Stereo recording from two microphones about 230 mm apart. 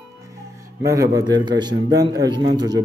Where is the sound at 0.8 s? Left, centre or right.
Centre.